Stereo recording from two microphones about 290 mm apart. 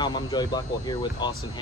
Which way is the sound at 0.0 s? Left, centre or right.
Centre.